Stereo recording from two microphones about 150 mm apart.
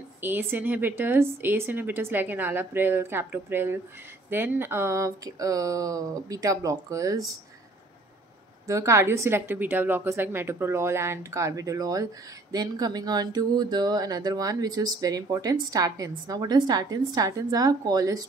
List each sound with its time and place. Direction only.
0.2 s a woman's voice: 15° right (ahead or behind)
8.6 s a woman's voice: 20° right (ahead or behind)